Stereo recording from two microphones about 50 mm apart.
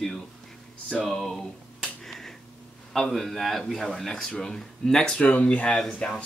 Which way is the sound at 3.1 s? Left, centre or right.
Centre.